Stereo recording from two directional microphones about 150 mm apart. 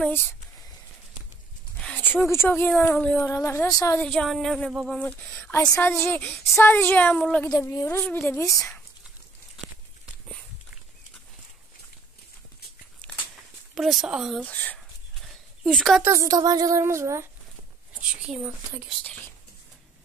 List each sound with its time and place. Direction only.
0.0 s speech: 15° left (ahead or behind)
1.8 s speech: 10° left (ahead or behind)
3.3 s a woman's voice: 20° left (ahead or behind)
4.0 s speech: 5° left (ahead or behind)
7.5 s speech: 20° left (ahead or behind)
13.0 s a sound: 10° left (ahead or behind)
13.7 s speech: centre (ahead or behind)
14.4 s speech: 10° left (ahead or behind)
15.2 s a sound: centre (ahead or behind)
16.0 s speech: 20° right (ahead or behind)
18.2 s speech: 5° right (ahead or behind)